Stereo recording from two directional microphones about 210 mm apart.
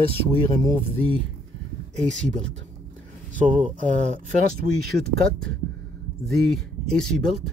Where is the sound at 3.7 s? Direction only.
35° right (ahead or behind).